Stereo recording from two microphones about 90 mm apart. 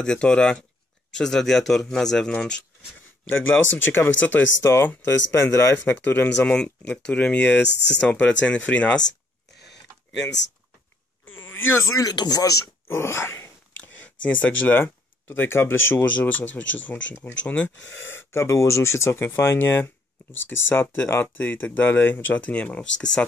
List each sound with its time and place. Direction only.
0.0 s a man's voice: 10° left (ahead or behind)
3.3 s speech: 20° left (ahead or behind)
5.9 s speech: 20° left (ahead or behind)
6.3 s speech: 10° left (ahead or behind)
11.2 s a sound: 25° left (ahead or behind)
12.1 s speech: 45° left (ahead or behind)
12.8 s speech: 30° left (ahead or behind)
13.7 s speech: 20° left (ahead or behind)